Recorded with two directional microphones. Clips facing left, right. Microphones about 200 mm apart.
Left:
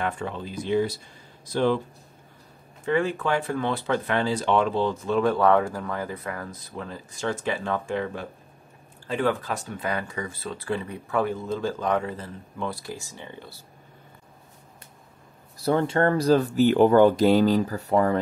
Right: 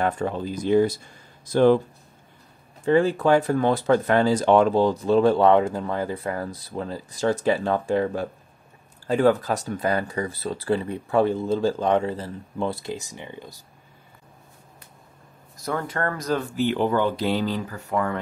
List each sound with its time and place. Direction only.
0.0 s speech: 40° right (ahead or behind)
2.8 s speech: 35° right (ahead or behind); by 13.6 s 15° right (ahead or behind)
15.5 s speech: 30° left (ahead or behind)